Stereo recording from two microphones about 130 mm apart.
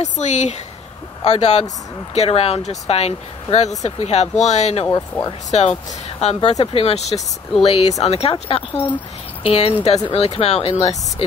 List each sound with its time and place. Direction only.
0.0 s speech: 65° left (ahead or behind)
5.1 s speech: 10° left (ahead or behind)
5.5 s speech: 60° left (ahead or behind)